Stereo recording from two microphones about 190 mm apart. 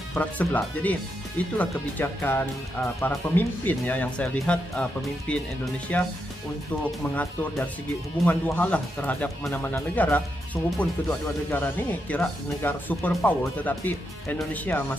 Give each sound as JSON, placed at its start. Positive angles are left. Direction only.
{"t": 0.1, "sound": "speech", "side_deg": 5}
{"t": 7.2, "sound": "speech", "side_deg": 10}